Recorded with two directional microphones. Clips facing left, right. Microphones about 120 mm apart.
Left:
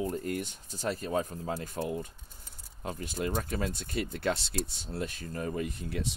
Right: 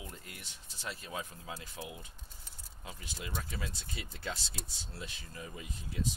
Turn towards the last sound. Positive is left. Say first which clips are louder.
# left 3 dB
turn(degrees=65)  # may be behind; listen again after turning